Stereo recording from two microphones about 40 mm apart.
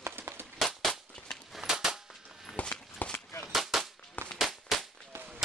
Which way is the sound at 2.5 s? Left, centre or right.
Left.